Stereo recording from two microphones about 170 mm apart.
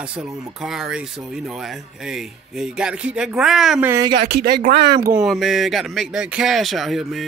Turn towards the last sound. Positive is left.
turn(degrees=0)  # may be behind; listen again after turning